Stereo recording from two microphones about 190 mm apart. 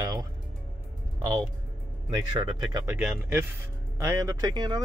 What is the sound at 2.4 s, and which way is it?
Speech, 25° right (ahead or behind).